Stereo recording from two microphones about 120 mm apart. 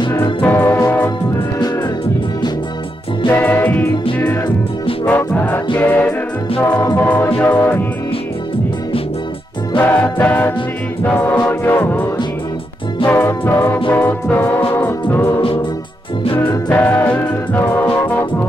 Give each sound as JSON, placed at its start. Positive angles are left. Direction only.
{"t": 0.1, "sound": "music", "side_deg": 20}
{"t": 3.3, "sound": "music", "side_deg": 15}
{"t": 5.0, "sound": "music", "side_deg": 15}
{"t": 9.8, "sound": "music", "side_deg": 20}
{"t": 16.6, "sound": "music", "side_deg": 15}